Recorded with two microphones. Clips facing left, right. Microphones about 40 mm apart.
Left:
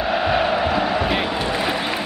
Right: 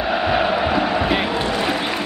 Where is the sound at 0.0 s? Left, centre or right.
Centre.